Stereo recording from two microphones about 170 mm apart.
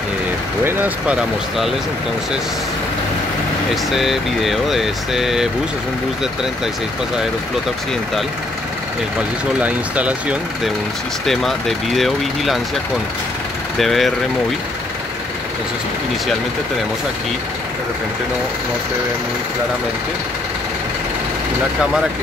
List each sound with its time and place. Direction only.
0.7 s speech: 10° right (ahead or behind)
3.9 s speech: centre (ahead or behind)
9.6 s speech: 10° right (ahead or behind)
13.7 s speech: centre (ahead or behind)